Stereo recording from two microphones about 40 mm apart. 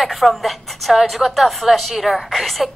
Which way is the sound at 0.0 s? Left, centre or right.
Centre.